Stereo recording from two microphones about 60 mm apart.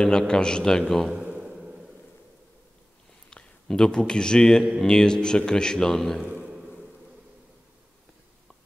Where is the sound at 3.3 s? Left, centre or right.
Centre.